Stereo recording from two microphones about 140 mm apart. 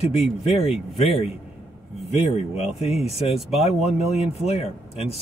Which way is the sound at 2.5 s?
45° left (ahead or behind).